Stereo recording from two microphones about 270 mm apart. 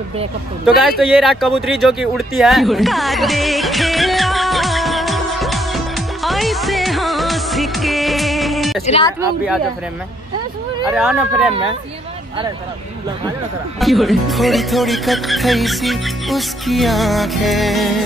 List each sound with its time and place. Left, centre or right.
0.7 s a sound: centre
8.8 s a woman's voice: left
10.9 s speech: centre
13.7 s speech: centre